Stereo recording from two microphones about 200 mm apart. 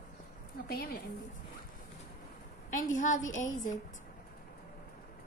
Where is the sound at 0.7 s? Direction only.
50° left (ahead or behind).